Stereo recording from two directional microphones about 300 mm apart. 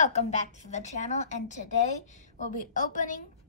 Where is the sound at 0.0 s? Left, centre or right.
Left.